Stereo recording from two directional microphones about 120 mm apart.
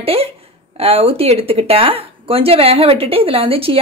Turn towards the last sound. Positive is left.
turn(degrees=-50)  # may be behind; listen again after turning